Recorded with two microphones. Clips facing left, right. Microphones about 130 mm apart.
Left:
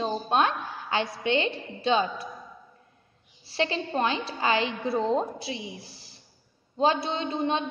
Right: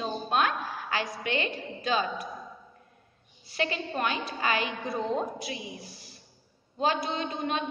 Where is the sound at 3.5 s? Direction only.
30° left (ahead or behind).